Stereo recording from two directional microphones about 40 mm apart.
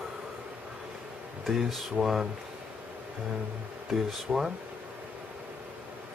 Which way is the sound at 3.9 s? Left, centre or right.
Centre.